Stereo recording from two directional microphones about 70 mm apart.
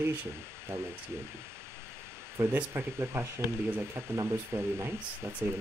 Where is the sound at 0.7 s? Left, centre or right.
Right.